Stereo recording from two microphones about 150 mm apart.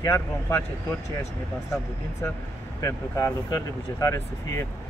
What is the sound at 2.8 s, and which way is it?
Speech, 20° left (ahead or behind).